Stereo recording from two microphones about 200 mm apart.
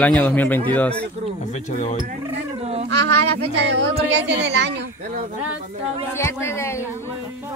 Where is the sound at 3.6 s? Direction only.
60° right (ahead or behind).